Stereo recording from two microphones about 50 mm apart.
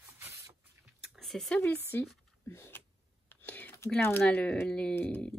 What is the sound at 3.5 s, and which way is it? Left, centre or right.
Whispering, left.